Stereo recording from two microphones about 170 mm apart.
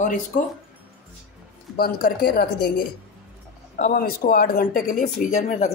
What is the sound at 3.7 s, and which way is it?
Speech, 55° left (ahead or behind).